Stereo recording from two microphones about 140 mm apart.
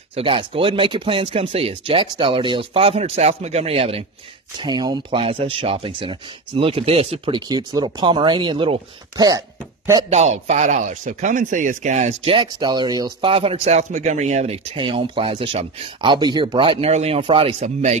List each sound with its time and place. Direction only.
0.1 s speech: 40° right (ahead or behind)
4.6 s speech: 30° right (ahead or behind); by 7.3 s 45° right (ahead or behind)
7.3 s speech: 30° right (ahead or behind)
10.0 s speech: 50° right (ahead or behind); by 13.3 s 25° right (ahead or behind)
13.3 s speech: 45° right (ahead or behind)
14.8 s speech: 40° right (ahead or behind)